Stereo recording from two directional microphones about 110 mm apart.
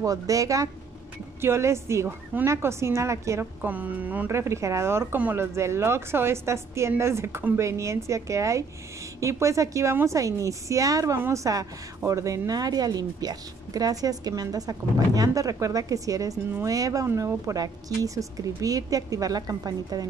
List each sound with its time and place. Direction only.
0.0 s a woman's voice: 30° right (ahead or behind)
3.6 s a woman's voice: 15° right (ahead or behind); by 20.1 s 35° right (ahead or behind)